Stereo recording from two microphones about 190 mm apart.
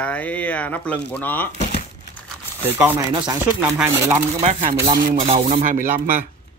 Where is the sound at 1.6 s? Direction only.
35° left (ahead or behind).